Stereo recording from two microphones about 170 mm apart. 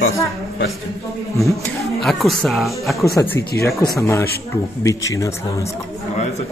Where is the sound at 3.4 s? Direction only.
65° left (ahead or behind).